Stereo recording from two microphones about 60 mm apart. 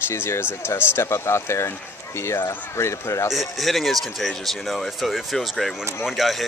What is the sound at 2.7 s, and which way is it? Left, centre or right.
Speech, left.